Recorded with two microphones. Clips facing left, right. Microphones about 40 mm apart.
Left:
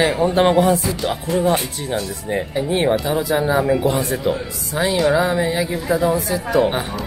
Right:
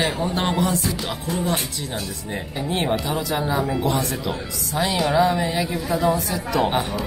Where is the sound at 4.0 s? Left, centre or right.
Left.